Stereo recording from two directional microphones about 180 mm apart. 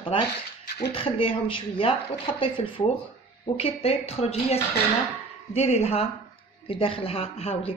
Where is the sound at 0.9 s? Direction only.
30° left (ahead or behind).